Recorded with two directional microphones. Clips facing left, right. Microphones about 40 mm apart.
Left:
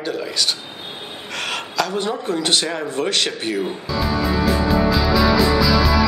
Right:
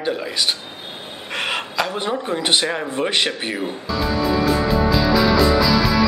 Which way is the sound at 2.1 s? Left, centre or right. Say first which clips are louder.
Even; centre.